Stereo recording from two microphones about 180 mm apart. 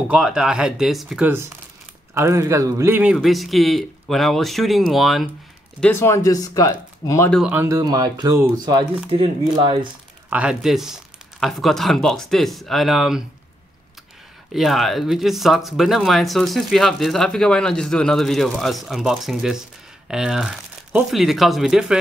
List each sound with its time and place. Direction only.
0.1 s speech: 5° right (ahead or behind)
5.8 s speech: 10° left (ahead or behind)
7.2 s speech: centre (ahead or behind)
7.5 s speech: 15° right (ahead or behind)
10.3 s speech: 5° right (ahead or behind)
14.5 s speech: centre (ahead or behind)